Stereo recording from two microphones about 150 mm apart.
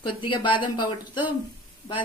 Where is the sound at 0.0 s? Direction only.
35° left (ahead or behind).